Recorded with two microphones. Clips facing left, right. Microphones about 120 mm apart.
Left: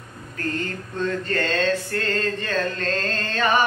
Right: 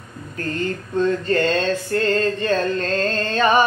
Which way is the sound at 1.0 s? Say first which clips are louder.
Right 5 dB; 20° right (ahead or behind).